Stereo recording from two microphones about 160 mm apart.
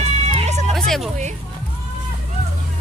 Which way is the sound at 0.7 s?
Centre (ahead or behind).